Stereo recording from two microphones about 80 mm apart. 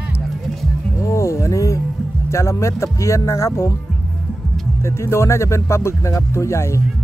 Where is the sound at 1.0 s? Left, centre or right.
Left.